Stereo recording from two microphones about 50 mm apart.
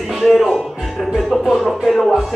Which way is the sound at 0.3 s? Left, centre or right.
Centre.